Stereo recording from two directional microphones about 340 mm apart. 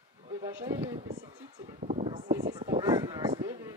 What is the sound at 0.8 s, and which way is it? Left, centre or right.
Speech, centre.